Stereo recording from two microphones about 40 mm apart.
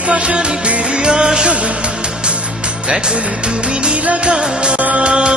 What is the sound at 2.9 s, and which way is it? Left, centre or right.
Music, right.